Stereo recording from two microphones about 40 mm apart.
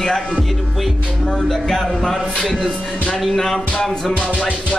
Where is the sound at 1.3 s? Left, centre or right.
Centre.